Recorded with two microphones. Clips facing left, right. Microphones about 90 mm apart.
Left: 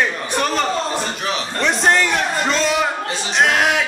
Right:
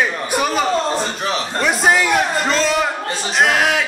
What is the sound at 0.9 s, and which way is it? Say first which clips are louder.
Speech: right 2 dB; 35° right (ahead or behind).